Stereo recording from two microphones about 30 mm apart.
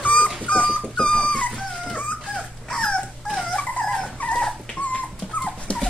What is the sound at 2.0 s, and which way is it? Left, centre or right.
Dog, left.